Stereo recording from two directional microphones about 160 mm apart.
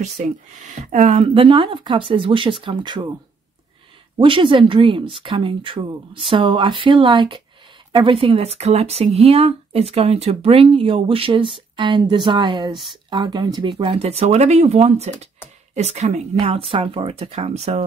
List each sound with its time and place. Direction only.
0.0 s speech: 45° right (ahead or behind); by 3.2 s 30° right (ahead or behind)
4.2 s speech: 30° right (ahead or behind)